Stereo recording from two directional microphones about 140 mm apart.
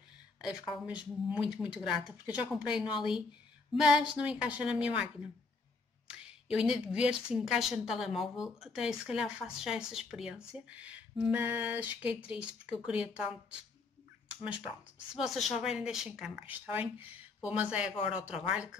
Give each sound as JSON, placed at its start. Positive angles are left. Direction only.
{"t": 0.4, "sound": "a woman's voice", "side_deg": -5}
{"t": 15.1, "sound": "speech", "side_deg": 0}